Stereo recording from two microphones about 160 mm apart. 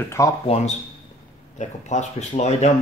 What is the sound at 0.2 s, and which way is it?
Speech, 20° left (ahead or behind).